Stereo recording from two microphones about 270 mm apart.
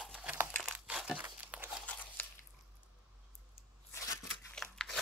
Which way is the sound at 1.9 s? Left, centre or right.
Centre.